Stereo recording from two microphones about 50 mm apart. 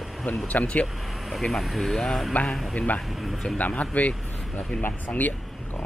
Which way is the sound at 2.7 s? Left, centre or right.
Left.